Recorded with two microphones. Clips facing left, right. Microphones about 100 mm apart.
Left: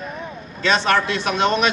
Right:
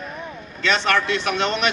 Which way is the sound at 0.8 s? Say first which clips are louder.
Left 1 dB; 15° left (ahead or behind).